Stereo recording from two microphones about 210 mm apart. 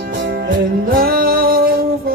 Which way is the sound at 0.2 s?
50° right (ahead or behind).